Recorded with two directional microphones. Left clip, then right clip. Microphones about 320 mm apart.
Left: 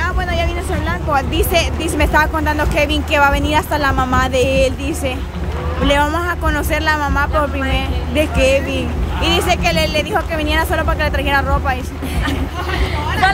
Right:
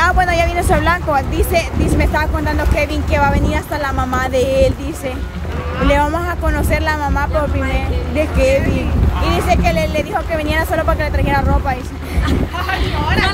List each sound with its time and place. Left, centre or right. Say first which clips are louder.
0.0 s speech: right 6 dB; centre